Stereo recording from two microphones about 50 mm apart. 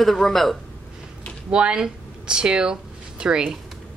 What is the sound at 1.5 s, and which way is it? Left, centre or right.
Speech, centre.